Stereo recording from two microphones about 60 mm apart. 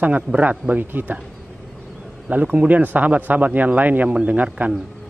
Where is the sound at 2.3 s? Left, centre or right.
Right.